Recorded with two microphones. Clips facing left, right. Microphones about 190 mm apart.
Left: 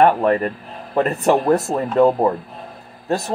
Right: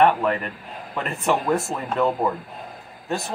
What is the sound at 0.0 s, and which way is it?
Speech, 40° left (ahead or behind).